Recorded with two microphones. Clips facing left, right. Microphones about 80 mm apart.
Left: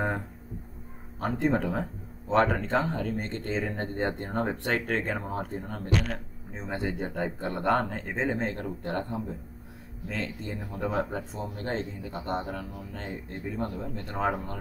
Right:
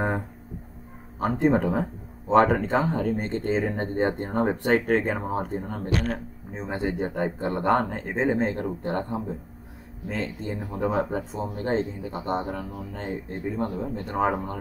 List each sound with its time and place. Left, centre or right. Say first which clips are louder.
1.4 s speech: right 5 dB; centre
13.1 s speech: right 6 dB; right